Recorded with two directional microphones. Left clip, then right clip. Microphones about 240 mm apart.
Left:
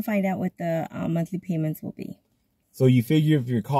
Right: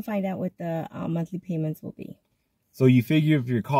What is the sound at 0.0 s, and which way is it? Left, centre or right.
Speech, centre.